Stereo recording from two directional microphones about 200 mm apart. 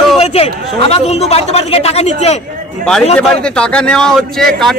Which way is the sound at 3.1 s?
5° left (ahead or behind).